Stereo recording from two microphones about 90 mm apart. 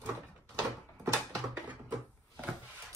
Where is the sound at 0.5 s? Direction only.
35° right (ahead or behind).